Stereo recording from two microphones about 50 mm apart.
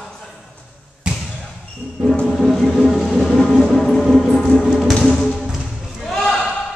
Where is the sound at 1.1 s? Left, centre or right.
Right.